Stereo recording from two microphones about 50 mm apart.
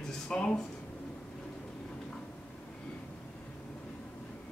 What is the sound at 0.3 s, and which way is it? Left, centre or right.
Speech, left.